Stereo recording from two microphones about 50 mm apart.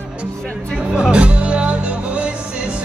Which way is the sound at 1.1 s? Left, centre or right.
Right.